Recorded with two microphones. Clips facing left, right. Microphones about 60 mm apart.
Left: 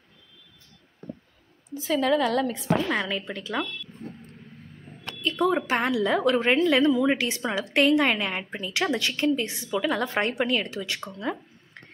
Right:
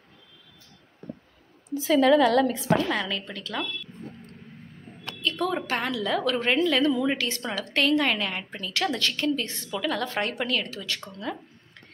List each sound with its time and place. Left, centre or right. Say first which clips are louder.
1.7 s speech: right 4 dB; right
2.9 s a woman's voice: left 1 dB; centre
5.0 s a sound: left 3 dB; left
5.7 s a woman's voice: left 3 dB; centre
6.9 s a woman's voice: left 3 dB; centre
7.2 s a woman's voice: left 2 dB; centre